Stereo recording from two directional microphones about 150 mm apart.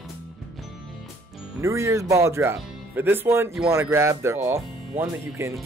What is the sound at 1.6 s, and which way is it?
A woman's voice, 20° right (ahead or behind).